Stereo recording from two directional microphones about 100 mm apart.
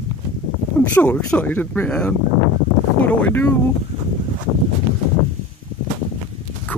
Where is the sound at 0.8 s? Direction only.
15° left (ahead or behind).